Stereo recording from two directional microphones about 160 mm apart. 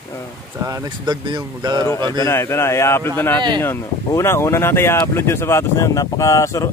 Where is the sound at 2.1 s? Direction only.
20° left (ahead or behind).